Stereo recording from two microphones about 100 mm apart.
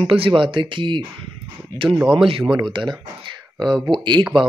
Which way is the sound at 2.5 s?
45° right (ahead or behind).